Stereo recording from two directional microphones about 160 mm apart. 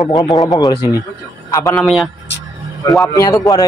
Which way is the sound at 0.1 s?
25° left (ahead or behind).